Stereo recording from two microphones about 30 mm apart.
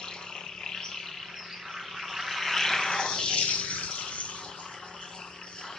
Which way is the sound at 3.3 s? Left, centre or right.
Left.